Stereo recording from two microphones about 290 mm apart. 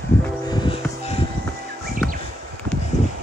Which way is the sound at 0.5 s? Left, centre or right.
Centre.